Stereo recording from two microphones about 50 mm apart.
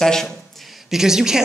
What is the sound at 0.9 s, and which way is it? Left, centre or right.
Speech, centre.